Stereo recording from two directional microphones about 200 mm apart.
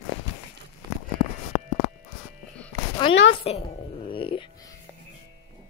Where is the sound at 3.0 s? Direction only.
25° left (ahead or behind).